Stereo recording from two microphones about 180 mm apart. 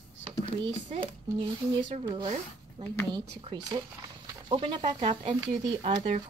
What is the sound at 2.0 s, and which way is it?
Speech, 25° right (ahead or behind).